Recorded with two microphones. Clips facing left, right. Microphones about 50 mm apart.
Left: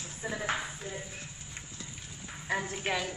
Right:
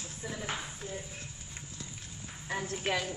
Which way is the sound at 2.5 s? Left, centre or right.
Left.